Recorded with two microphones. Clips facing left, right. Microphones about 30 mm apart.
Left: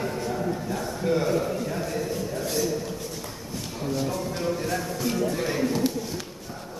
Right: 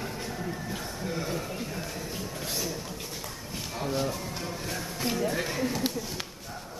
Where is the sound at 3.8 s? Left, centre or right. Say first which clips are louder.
Left 2 dB; centre.